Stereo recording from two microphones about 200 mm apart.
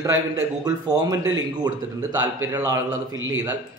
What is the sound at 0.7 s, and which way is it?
A man's voice, 20° right (ahead or behind).